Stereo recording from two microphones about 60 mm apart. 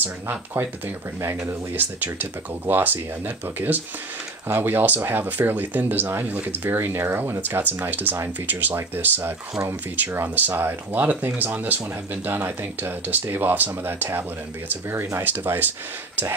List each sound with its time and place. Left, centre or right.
0.0 s speech: right
1.2 s speech: right
1.8 s speech: right